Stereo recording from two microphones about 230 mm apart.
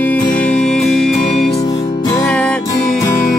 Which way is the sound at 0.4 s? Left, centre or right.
Centre.